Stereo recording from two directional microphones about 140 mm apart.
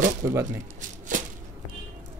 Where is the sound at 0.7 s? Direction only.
70° right (ahead or behind).